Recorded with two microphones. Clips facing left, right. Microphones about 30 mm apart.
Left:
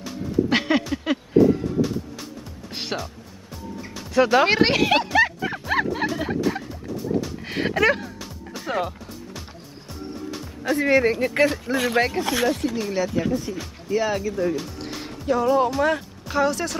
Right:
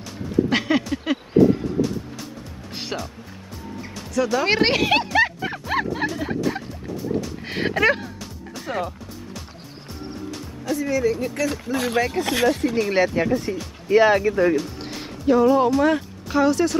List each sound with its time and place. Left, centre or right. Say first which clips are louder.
0.0 s a sound: right 1 dB; centre
1.1 s a sound: right 1 dB; centre
1.8 s music: even; centre
4.1 s speech: left 4 dB; left
4.5 s music: even; centre
7.3 s music: even; centre
8.2 s music: even; centre
10.6 s speech: left 3 dB; left
11.7 s speech: left 1 dB; left
12.2 s speech: right 1 dB; right
12.7 s speech: right 5 dB; right
13.8 s speech: right 7 dB; right
15.0 s music: right 5 dB; centre
15.7 s speech: right 3 dB; centre